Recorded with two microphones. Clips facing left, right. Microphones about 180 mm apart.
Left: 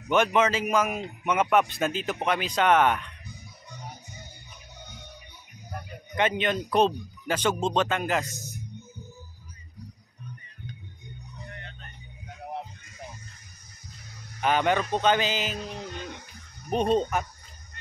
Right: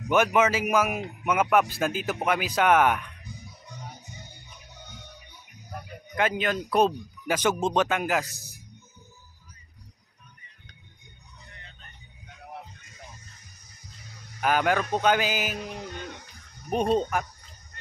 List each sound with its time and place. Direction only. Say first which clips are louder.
0.1 s speech: right 1 dB; 5° right (ahead or behind)
5.7 s speech: left 1 dB; 5° right (ahead or behind)
8.3 s speech: left 9 dB; 35° right (ahead or behind)
14.4 s speech: even; 5° right (ahead or behind)